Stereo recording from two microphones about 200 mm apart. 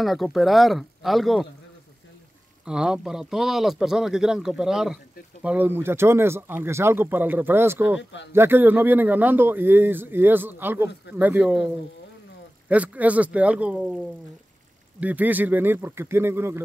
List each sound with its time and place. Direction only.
0.0 s speech: centre (ahead or behind)
2.6 s speech: 5° right (ahead or behind)
8.0 s speech: 65° left (ahead or behind)
8.3 s speech: 10° right (ahead or behind)
12.6 s speech: 5° right (ahead or behind)